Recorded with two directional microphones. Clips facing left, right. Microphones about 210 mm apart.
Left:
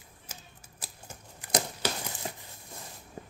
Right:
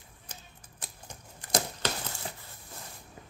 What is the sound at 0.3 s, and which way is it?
Typewriter, 5° left (ahead or behind).